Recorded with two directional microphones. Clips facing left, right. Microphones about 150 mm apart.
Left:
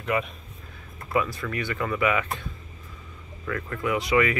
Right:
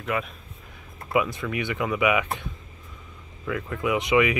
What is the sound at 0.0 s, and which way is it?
Speech, centre (ahead or behind).